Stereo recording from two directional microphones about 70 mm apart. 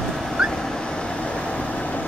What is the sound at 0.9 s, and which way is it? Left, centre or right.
Vehicle, centre.